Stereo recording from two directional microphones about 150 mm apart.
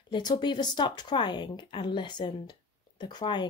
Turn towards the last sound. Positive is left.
turn(degrees=30)  # may be behind; listen again after turning